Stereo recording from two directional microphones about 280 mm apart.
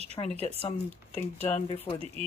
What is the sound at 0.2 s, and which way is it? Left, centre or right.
Speech, left.